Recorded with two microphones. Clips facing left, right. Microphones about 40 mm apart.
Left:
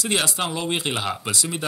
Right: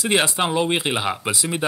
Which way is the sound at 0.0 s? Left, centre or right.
Right.